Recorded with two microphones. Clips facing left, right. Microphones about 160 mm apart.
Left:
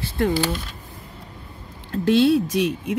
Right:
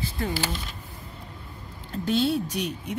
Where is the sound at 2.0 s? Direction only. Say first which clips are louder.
Left 7 dB; 90° left.